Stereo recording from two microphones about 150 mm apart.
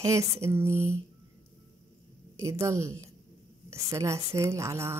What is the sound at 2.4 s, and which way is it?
Speech, 20° right (ahead or behind).